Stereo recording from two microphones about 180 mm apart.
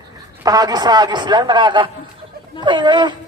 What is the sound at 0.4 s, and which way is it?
Speech, 20° right (ahead or behind).